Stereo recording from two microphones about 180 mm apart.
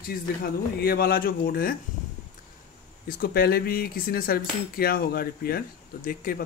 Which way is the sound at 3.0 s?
55° left (ahead or behind).